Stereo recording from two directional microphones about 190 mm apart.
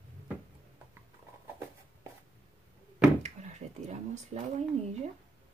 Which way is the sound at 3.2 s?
35° right (ahead or behind).